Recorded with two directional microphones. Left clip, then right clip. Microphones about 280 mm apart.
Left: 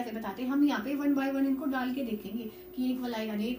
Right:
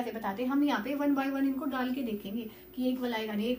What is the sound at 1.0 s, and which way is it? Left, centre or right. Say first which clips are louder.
Speech: even; right.